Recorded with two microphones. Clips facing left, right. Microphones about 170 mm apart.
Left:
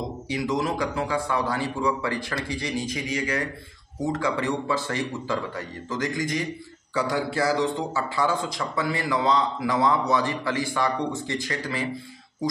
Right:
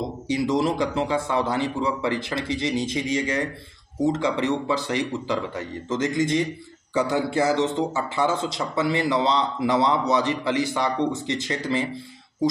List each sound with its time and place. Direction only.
0.3 s speech: 30° right (ahead or behind)